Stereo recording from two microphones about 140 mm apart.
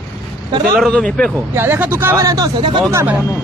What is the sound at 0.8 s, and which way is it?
Speech, 5° left (ahead or behind).